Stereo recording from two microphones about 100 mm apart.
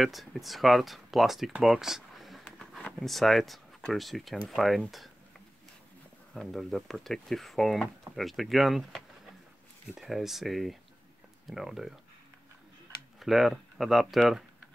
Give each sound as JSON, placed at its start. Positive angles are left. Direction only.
{"t": 0.0, "sound": "speech", "side_deg": 0}
{"t": 6.3, "sound": "speech", "side_deg": 0}
{"t": 13.2, "sound": "speech", "side_deg": 0}